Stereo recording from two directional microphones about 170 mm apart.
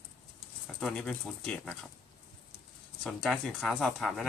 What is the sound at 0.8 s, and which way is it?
Speech, 5° left (ahead or behind).